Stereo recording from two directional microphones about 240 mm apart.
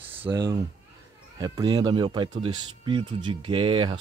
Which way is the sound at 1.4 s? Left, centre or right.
Centre.